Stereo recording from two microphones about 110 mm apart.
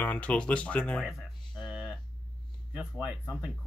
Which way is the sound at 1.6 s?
5° right (ahead or behind).